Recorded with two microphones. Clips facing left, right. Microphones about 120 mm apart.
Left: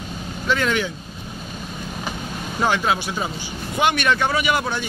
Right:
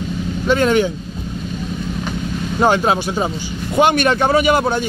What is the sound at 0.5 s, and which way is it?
Speech, 35° right (ahead or behind).